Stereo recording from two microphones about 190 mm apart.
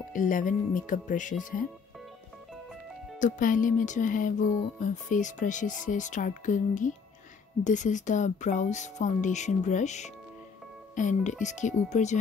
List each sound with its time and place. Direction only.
0.1 s speech: 45° left (ahead or behind)
3.2 s speech: 45° left (ahead or behind)